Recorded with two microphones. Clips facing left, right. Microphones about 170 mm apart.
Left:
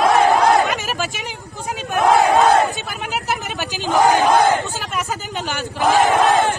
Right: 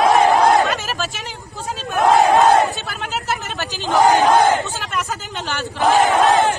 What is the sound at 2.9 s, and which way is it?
Chatter, 15° left (ahead or behind).